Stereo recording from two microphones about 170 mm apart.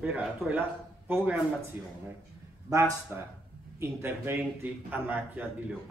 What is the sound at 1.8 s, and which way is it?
A man's voice, 10° right (ahead or behind).